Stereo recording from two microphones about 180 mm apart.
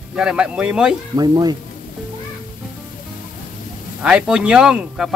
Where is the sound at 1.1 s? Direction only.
20° right (ahead or behind).